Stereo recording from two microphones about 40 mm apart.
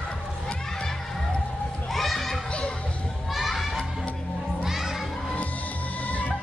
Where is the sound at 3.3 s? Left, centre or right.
Centre.